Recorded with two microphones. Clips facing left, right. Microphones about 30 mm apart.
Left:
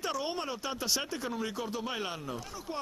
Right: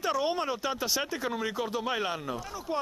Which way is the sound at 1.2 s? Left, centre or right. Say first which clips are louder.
Right 3 dB; right.